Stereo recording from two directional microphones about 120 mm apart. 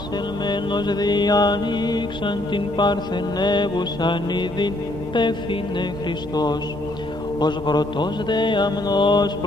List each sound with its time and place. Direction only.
0.5 s mantra: 40° left (ahead or behind)